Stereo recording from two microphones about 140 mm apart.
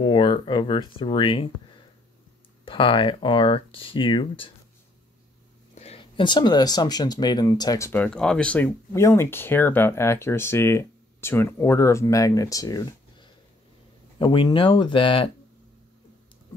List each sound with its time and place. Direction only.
0.0 s speech: 35° left (ahead or behind)
2.6 s speech: 35° left (ahead or behind)
5.8 s speech: 45° left (ahead or behind); by 7.9 s 25° left (ahead or behind)
7.9 s speech: 10° left (ahead or behind)
8.9 s speech: 20° left (ahead or behind); by 15.3 s 40° left (ahead or behind)